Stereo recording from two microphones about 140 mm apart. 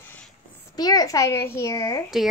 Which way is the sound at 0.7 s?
25° left (ahead or behind).